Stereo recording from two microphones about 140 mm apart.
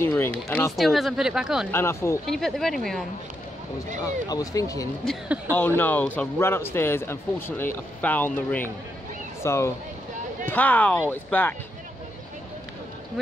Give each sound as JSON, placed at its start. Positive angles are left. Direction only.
{"t": 0.0, "sound": "a man's voice", "side_deg": 15}
{"t": 0.7, "sound": "speech", "side_deg": 0}
{"t": 1.7, "sound": "speech", "side_deg": 15}
{"t": 2.2, "sound": "speech", "side_deg": 0}
{"t": 4.0, "sound": "speech", "side_deg": 25}
{"t": 5.8, "sound": "a man's voice", "side_deg": 15}